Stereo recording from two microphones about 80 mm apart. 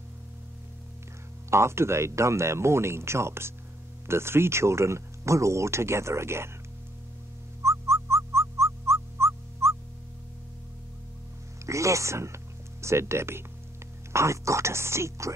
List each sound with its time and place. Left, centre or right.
1.5 s speech: right
7.6 s music: right
11.6 s speech: right